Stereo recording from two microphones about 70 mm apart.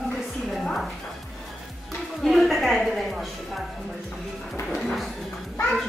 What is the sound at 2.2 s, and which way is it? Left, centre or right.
A woman's voice, centre.